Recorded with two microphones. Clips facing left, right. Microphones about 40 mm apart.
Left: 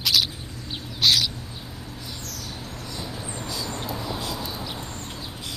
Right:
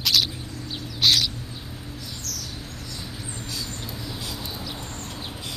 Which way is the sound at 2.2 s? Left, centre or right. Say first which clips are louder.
Even; left.